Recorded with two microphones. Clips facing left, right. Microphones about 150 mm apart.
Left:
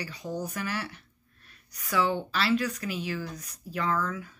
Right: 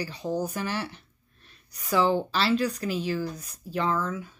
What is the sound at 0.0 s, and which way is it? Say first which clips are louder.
Speech: right 5 dB; 30° right (ahead or behind).